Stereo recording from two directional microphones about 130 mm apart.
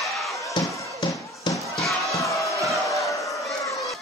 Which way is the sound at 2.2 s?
25° left (ahead or behind).